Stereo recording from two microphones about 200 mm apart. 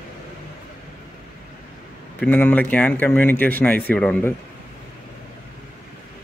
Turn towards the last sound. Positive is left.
turn(degrees=5)  # may be behind; listen again after turning